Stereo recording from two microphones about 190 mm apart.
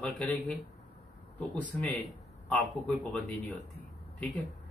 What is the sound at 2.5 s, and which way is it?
A man's voice, 5° left (ahead or behind).